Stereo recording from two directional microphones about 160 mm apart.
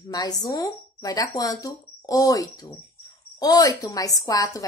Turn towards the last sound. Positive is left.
turn(degrees=20)  # may be behind; listen again after turning